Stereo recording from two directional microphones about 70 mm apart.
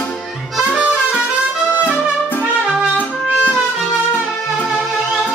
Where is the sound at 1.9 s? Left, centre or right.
Left.